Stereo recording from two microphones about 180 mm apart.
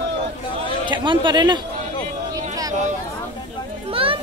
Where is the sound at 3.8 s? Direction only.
30° right (ahead or behind).